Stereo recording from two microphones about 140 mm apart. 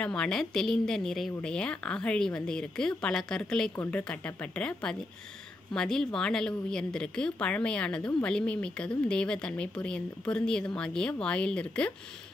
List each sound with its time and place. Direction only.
0.0 s speech: 5° left (ahead or behind)